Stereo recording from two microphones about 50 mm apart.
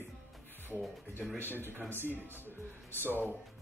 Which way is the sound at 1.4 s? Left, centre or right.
Left.